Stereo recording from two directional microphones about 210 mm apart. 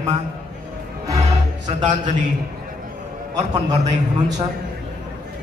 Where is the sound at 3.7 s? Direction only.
20° right (ahead or behind).